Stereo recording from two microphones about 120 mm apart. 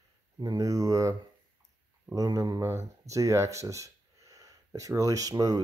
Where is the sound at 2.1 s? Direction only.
30° right (ahead or behind).